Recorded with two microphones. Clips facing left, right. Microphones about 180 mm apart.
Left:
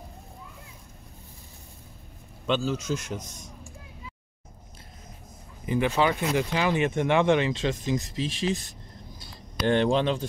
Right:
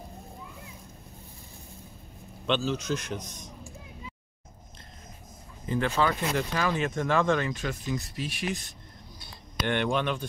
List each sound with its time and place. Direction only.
2.4 s speech: 5° left (ahead or behind)
5.7 s speech: 15° left (ahead or behind)
8.2 s speech: 90° left
9.7 s speech: 30° left (ahead or behind)